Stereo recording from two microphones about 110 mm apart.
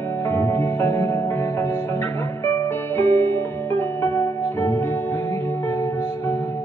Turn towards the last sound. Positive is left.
turn(degrees=20)  # may be behind; listen again after turning